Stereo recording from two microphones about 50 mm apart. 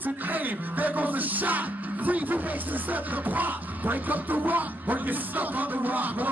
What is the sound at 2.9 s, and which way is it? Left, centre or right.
Music, right.